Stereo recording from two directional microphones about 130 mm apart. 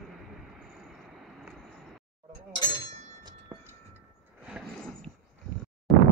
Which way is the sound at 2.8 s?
35° right (ahead or behind).